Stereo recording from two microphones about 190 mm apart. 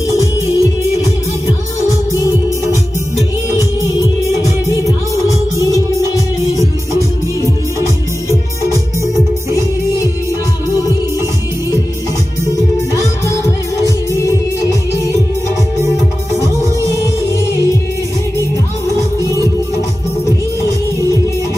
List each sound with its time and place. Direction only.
0.2 s music: 15° right (ahead or behind)
3.4 s music: 15° right (ahead or behind)
6.5 s music: 15° right (ahead or behind)